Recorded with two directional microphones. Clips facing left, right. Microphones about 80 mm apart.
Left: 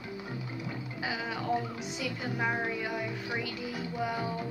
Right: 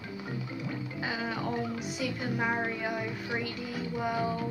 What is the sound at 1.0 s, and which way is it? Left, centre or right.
A woman's voice, centre.